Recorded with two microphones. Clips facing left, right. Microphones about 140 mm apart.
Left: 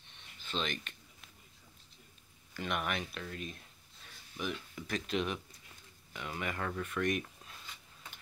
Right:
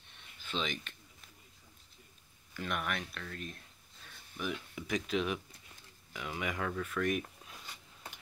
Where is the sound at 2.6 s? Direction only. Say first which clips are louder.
Left 1 dB; 10° left (ahead or behind).